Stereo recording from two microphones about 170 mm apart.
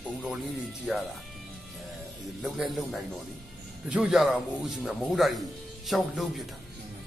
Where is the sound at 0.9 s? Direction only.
5° right (ahead or behind).